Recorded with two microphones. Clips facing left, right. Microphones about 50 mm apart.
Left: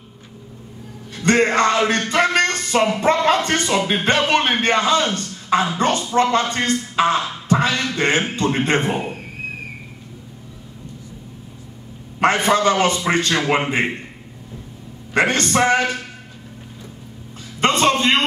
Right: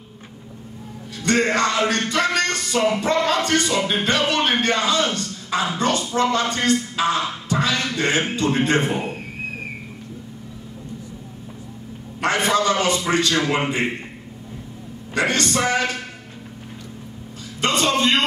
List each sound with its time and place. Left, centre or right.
1.1 s music: left
3.0 s speech: left
12.2 s speech: left
15.1 s speech: left
17.6 s speech: left